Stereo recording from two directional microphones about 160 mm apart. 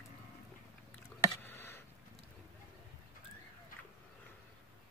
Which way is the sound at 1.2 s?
15° left (ahead or behind).